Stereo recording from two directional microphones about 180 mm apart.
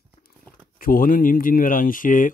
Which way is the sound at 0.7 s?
50° left (ahead or behind).